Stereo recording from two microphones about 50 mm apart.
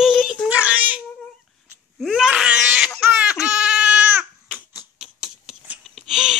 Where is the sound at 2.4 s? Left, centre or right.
Centre.